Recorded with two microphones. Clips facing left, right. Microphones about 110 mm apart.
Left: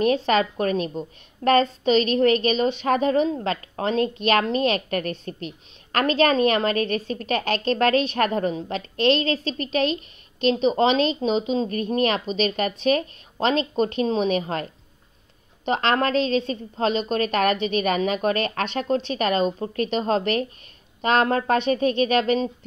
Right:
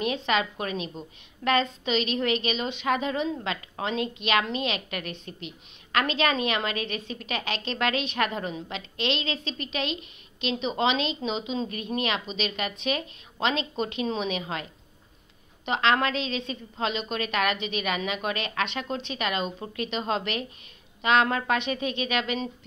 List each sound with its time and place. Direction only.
0.0 s a woman's voice: 40° left (ahead or behind)